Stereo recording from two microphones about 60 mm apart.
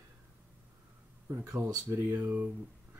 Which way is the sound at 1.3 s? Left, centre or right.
Right.